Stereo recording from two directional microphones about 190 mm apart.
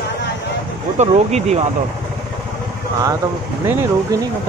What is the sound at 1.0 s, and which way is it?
Speech, 35° right (ahead or behind).